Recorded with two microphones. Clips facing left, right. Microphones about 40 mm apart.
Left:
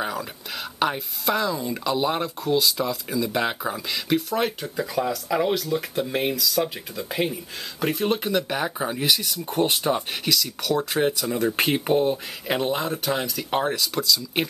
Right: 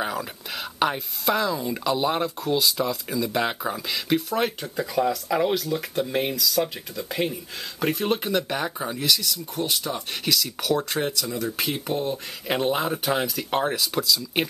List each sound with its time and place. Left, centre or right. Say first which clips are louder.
0.0 s speech: even; centre
8.8 s speech: left 1 dB; centre
9.6 s speech: left 6 dB; left
10.2 s speech: right 4 dB; centre; by 12.1 s left
12.4 s speech: right 1 dB; centre